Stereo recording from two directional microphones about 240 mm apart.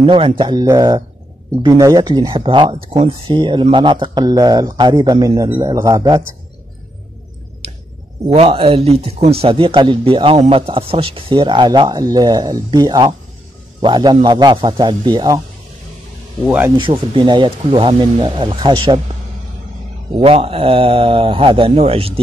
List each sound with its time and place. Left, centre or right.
0.0 s speech: right
8.3 s speech: right
16.4 s speech: centre
16.7 s speech: right
20.2 s speech: right